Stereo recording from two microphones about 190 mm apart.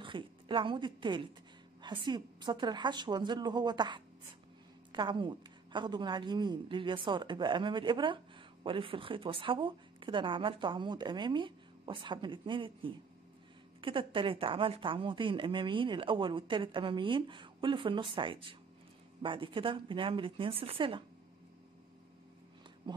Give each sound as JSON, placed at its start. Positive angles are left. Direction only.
{"t": 0.0, "sound": "a woman's voice", "side_deg": -25}
{"t": 22.8, "sound": "speech", "side_deg": -25}